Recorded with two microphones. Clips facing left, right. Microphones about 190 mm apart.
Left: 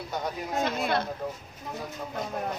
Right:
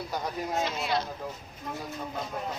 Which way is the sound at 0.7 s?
55° left (ahead or behind).